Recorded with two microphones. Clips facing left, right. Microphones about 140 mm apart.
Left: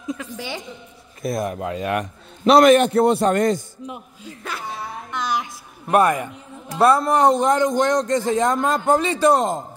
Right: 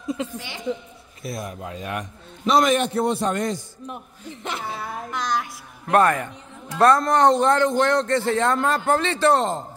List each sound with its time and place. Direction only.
0.2 s a woman's voice: 25° right (ahead or behind)
1.2 s a man's voice: 50° left (ahead or behind)
3.8 s speech: 10° left (ahead or behind)
4.4 s a woman's voice: 25° right (ahead or behind)
5.1 s music: 5° left (ahead or behind)
5.4 s a man's voice: 10° left (ahead or behind)